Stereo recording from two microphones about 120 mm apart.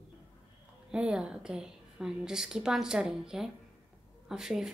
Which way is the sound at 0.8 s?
5° right (ahead or behind).